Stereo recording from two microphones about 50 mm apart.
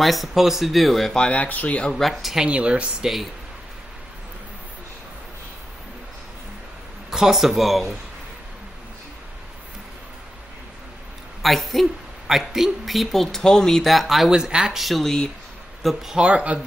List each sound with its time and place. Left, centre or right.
0.0 s a woman's voice: centre
1.3 s speech: left
1.9 s a woman's voice: centre
2.4 s speech: right
3.0 s a woman's voice: centre
7.1 s a woman's voice: centre
11.4 s a woman's voice: centre
14.8 s a woman's voice: centre
16.1 s speech: centre